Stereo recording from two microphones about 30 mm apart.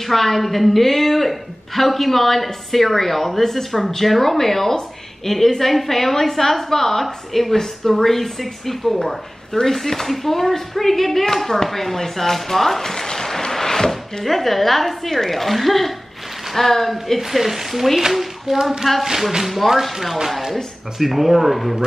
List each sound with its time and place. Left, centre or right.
0.1 s speech: centre
17.2 s a woman's voice: centre
19.4 s speech: centre